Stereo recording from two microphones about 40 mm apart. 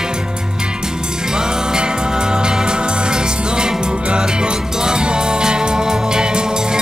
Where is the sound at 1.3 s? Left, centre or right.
Centre.